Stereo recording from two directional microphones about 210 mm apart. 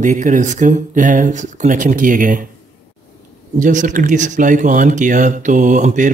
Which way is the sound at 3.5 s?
35° right (ahead or behind).